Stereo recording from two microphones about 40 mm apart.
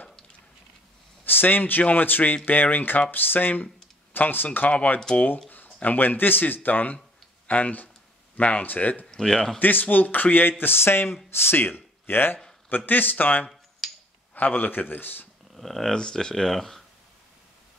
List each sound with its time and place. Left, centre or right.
1.2 s speech: left
4.6 s speech: left
9.1 s a man's voice: centre
9.6 s speech: left
10.6 s speech: left
12.6 s speech: left
13.8 s finger snapping: centre
14.3 s a man's voice: left
15.5 s speech: centre
15.9 s speech: centre